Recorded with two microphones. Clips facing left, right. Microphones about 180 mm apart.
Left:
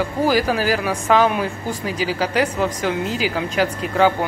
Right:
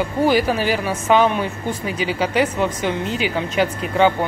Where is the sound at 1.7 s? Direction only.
40° left (ahead or behind).